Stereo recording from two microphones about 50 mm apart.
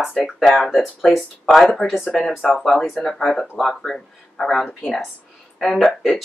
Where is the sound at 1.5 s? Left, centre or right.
Centre.